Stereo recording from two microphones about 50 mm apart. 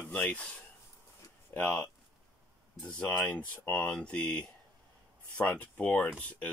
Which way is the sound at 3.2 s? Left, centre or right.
Left.